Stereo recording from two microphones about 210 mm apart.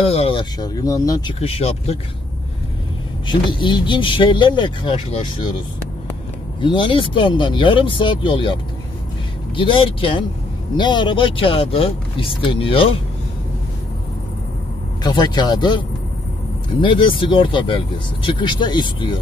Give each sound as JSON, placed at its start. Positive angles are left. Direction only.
{"t": 0.0, "sound": "speech", "side_deg": 25}
{"t": 1.4, "sound": "speech", "side_deg": 30}
{"t": 3.3, "sound": "speech", "side_deg": 20}
{"t": 6.6, "sound": "speech", "side_deg": 25}
{"t": 9.6, "sound": "speech", "side_deg": 25}
{"t": 15.0, "sound": "speech", "side_deg": 20}
{"t": 16.8, "sound": "speech", "side_deg": 25}